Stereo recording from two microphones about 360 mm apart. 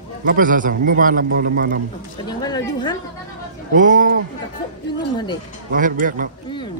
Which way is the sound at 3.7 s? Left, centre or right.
Right.